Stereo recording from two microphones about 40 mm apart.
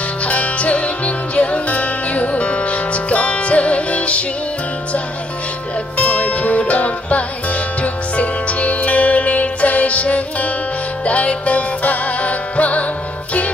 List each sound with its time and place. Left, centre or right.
0.2 s music: left
5.9 s music: left